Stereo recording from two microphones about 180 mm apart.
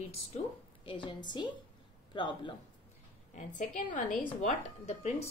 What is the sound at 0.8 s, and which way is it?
A woman's voice, 30° left (ahead or behind).